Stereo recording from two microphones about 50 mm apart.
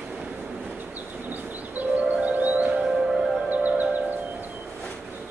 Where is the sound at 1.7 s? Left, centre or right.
Right.